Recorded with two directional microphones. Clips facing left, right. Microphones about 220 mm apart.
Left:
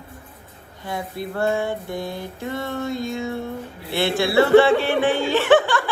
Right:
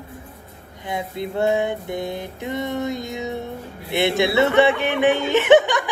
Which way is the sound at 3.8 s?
20° right (ahead or behind).